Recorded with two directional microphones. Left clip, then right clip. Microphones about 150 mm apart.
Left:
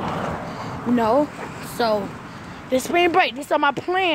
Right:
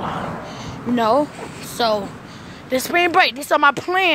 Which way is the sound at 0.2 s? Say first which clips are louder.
Left 1 dB; 40° right (ahead or behind).